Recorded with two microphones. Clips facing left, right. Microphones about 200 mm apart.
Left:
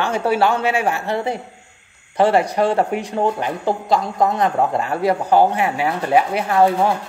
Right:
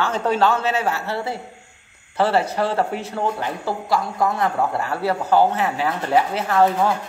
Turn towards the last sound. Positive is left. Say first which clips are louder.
# left 2 dB
turn(degrees=15)  # may be behind; listen again after turning